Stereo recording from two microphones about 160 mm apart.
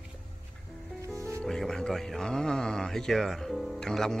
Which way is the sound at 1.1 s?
20° right (ahead or behind).